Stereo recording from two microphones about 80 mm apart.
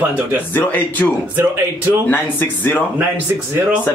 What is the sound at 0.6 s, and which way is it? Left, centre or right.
Speech, left.